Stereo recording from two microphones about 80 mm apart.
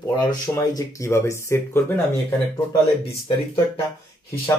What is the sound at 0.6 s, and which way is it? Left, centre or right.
Speech, left.